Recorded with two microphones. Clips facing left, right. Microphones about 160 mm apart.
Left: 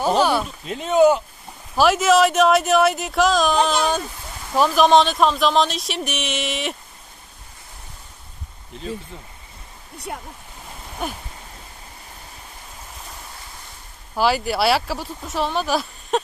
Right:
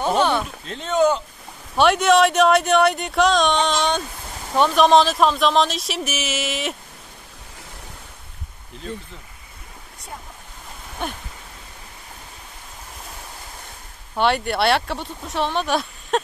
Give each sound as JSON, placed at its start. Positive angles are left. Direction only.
{"t": 0.0, "sound": "speech", "side_deg": 5}
{"t": 10.1, "sound": "speech", "side_deg": 65}
{"t": 11.0, "sound": "speech", "side_deg": 5}
{"t": 14.1, "sound": "speech", "side_deg": 0}